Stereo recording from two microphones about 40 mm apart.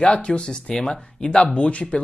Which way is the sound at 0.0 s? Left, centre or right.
Left.